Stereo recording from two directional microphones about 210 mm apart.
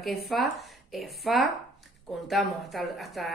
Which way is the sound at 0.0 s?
Centre (ahead or behind).